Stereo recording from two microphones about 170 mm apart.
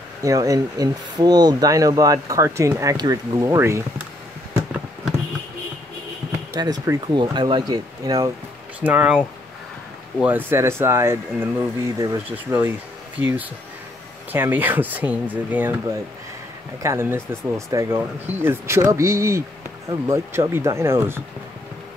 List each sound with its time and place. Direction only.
0.2 s speech: 20° right (ahead or behind)
6.5 s speech: 20° right (ahead or behind)
8.8 s speech: 5° right (ahead or behind)
10.2 s speech: 15° right (ahead or behind)